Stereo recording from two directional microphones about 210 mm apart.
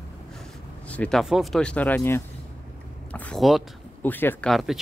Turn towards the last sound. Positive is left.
turn(degrees=0)  # may be behind; listen again after turning